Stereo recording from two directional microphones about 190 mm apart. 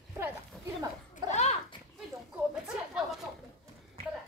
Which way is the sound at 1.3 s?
35° left (ahead or behind).